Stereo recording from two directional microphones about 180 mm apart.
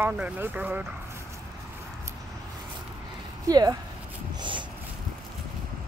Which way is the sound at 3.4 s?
20° right (ahead or behind).